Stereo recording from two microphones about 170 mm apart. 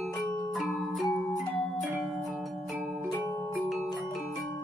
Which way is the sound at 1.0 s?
20° left (ahead or behind).